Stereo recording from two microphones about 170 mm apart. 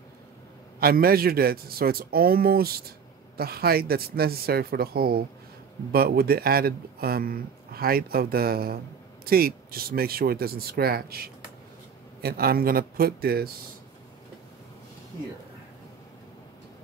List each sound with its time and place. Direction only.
0.7 s speech: 60° right (ahead or behind)